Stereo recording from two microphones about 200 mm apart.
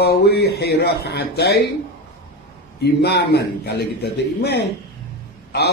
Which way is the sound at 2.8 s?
55° left (ahead or behind).